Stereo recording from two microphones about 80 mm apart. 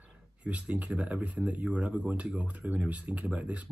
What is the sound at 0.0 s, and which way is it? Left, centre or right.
Speech, centre.